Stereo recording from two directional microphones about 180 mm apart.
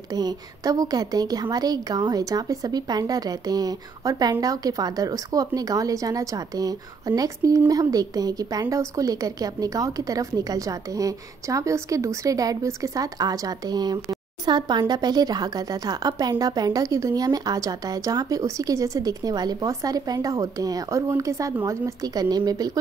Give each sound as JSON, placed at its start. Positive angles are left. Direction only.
{"t": 0.1, "sound": "a woman's voice", "side_deg": -20}